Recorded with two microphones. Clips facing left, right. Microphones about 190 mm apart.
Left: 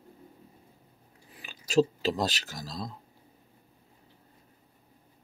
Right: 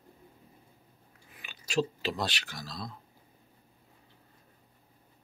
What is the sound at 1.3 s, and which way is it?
Speech, 40° left (ahead or behind).